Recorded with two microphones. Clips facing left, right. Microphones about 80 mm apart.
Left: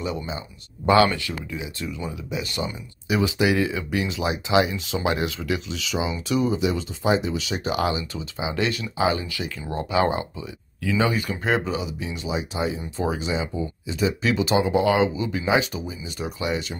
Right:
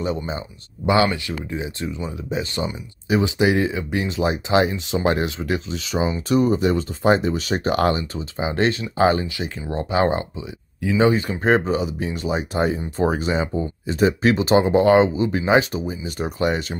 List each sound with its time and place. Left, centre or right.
0.8 s speech: right
1.5 s speech: right
8.0 s speech: right
9.4 s speech: right
10.3 s speech: right